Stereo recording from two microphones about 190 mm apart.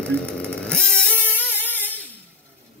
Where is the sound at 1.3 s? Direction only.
10° left (ahead or behind).